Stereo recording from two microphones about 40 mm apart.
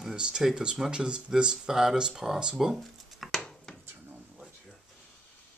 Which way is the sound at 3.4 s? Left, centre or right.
Centre.